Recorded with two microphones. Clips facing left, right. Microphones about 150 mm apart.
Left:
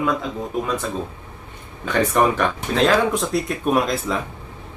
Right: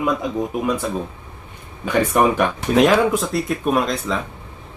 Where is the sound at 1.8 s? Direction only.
10° right (ahead or behind).